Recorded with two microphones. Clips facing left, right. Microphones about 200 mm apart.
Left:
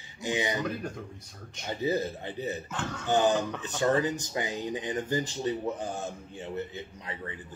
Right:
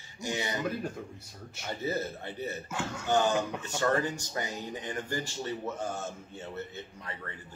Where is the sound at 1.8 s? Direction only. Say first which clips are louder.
Left 4 dB; 15° left (ahead or behind).